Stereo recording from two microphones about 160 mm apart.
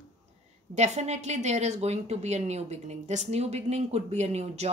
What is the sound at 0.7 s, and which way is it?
A woman's voice, 45° right (ahead or behind).